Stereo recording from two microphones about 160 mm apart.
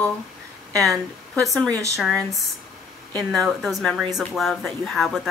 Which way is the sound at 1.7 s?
20° right (ahead or behind).